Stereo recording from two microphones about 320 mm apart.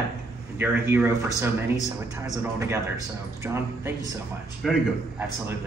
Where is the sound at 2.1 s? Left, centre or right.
Centre.